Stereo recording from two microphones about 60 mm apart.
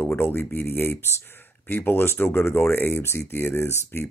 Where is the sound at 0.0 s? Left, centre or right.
Left.